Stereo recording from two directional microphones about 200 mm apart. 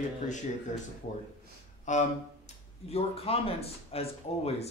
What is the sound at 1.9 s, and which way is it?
Speech, 35° left (ahead or behind).